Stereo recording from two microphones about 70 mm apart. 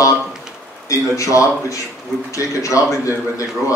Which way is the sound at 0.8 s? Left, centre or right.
Left.